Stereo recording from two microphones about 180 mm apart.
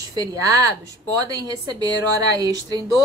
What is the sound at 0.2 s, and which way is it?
A woman's voice, 20° right (ahead or behind).